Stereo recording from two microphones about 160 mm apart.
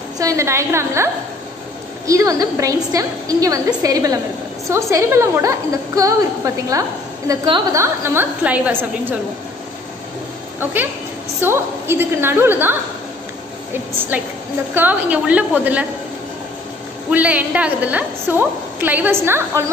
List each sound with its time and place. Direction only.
0.2 s a woman's voice: 20° right (ahead or behind)
7.7 s a woman's voice: 15° right (ahead or behind)
10.6 s a woman's voice: 10° right (ahead or behind)
14.7 s a woman's voice: 10° right (ahead or behind)
17.1 s a woman's voice: 10° right (ahead or behind)